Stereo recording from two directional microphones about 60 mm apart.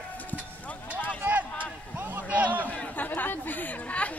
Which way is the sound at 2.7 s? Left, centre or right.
Left.